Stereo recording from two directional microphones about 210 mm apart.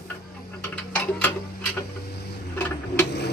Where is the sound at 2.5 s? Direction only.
10° left (ahead or behind).